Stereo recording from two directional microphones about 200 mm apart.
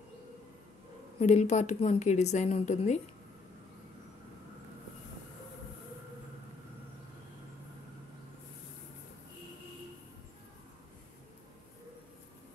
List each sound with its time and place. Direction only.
1.2 s a woman's voice: 35° left (ahead or behind)